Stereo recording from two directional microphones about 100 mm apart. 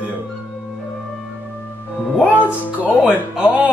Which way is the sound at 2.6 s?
15° right (ahead or behind).